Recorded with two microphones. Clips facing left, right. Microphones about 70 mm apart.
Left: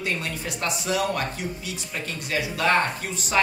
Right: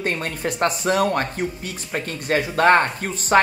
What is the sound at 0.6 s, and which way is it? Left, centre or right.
Speech, right.